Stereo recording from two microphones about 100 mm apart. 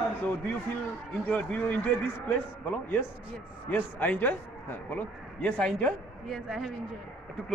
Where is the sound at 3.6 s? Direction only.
20° left (ahead or behind).